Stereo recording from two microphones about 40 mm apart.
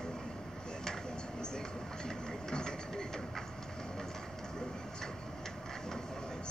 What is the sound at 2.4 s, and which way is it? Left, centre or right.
Ratchet, centre.